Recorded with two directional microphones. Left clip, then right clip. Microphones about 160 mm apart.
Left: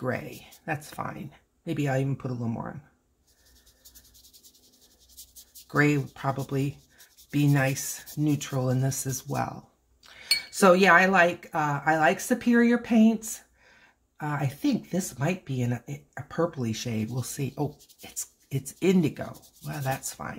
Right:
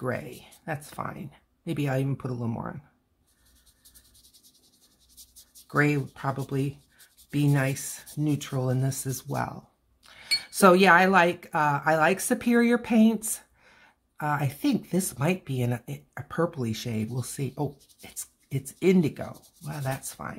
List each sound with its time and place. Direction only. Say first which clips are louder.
0.0 s speech: even; 15° right (ahead or behind)
5.7 s speech: left 1 dB; 10° right (ahead or behind)